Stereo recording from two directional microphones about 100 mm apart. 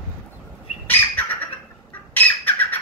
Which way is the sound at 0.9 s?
20° left (ahead or behind).